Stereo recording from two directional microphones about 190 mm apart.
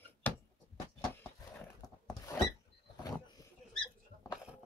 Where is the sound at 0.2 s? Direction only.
10° left (ahead or behind).